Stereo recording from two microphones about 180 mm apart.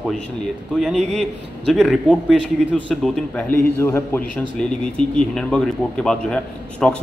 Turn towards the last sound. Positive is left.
turn(degrees=5)  # may be behind; listen again after turning